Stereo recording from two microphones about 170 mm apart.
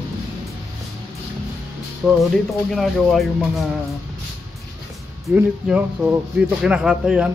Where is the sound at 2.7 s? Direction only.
Centre (ahead or behind).